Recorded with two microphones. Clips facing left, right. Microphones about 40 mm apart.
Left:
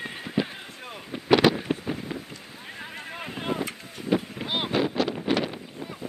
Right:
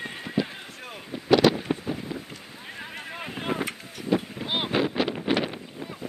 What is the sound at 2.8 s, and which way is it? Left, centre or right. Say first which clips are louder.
Boat: even; centre.